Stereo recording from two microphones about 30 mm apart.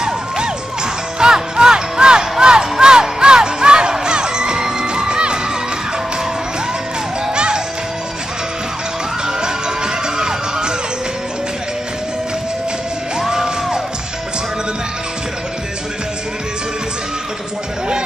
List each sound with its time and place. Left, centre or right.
1.2 s music: right
4.0 s children shouting: right
7.3 s music: right
10.0 s music: right
13.3 s music: right